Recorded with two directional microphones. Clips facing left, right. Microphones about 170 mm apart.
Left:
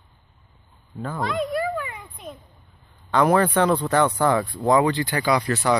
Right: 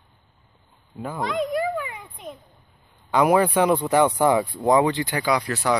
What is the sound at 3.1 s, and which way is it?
Speech, 10° right (ahead or behind).